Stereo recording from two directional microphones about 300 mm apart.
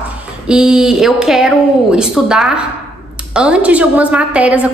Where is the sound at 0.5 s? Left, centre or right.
Centre.